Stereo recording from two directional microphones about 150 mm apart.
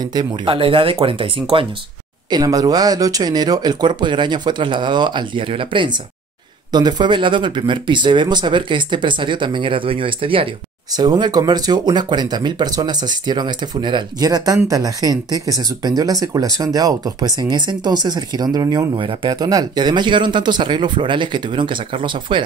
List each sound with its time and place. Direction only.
0.0 s speech: 30° right (ahead or behind)
2.2 s speech: 25° right (ahead or behind)